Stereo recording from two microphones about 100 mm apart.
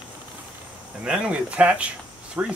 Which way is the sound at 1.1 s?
10° right (ahead or behind).